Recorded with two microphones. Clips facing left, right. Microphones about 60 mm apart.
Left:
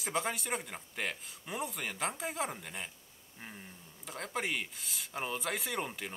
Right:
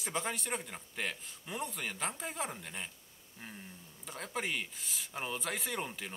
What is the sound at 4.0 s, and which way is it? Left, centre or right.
Speech, centre.